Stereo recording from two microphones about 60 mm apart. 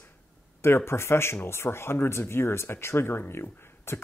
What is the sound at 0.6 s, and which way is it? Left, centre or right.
Speech, left.